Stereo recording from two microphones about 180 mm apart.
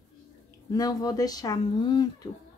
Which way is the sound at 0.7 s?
20° left (ahead or behind).